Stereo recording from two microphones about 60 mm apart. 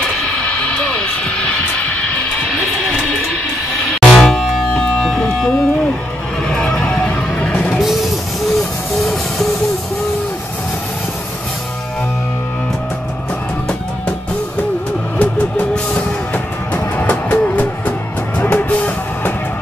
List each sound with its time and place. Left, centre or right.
0.7 s music: left
4.0 s music: centre
7.8 s music: centre
15.1 s music: left